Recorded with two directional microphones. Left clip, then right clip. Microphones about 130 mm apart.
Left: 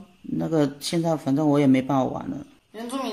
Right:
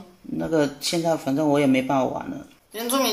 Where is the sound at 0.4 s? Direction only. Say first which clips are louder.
Right 1 dB; 40° left (ahead or behind).